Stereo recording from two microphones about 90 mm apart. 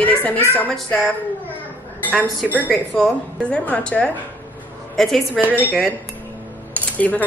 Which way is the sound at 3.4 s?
15° left (ahead or behind).